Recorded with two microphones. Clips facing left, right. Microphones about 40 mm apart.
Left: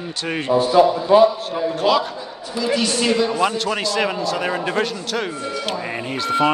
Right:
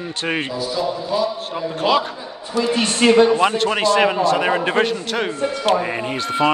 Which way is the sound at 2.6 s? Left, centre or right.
Right.